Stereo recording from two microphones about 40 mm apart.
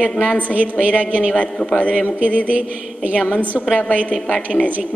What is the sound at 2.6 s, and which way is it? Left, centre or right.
Speech, right.